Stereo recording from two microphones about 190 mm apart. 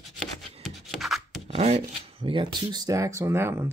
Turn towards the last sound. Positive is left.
turn(degrees=-15)  # may be behind; listen again after turning